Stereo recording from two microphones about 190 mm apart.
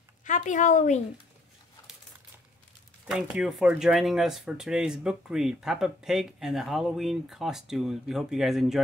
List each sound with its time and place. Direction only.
0.2 s a woman's voice: 40° left (ahead or behind)
3.1 s speech: 5° right (ahead or behind)